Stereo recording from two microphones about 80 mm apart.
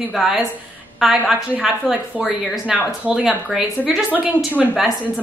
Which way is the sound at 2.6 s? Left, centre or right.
Centre.